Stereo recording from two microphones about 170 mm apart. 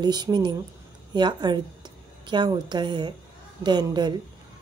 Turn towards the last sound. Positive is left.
turn(degrees=-25)  # may be behind; listen again after turning